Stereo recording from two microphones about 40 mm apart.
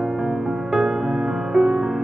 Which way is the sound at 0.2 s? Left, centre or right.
Centre.